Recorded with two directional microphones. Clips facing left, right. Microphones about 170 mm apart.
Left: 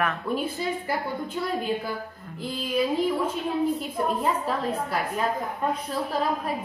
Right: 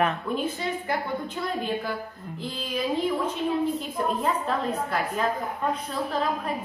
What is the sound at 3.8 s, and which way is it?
A woman's voice, 5° left (ahead or behind).